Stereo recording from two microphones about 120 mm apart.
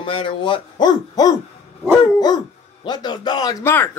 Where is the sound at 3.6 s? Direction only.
15° left (ahead or behind).